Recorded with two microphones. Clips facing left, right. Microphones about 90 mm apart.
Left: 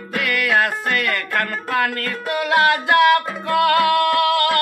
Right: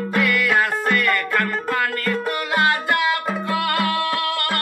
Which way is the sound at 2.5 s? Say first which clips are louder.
Left 4 dB; 70° left (ahead or behind).